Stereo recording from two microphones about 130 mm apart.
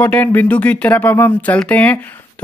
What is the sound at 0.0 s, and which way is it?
Speech, 15° left (ahead or behind).